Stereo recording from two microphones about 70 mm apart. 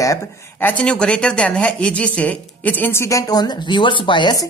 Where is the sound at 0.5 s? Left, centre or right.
Left.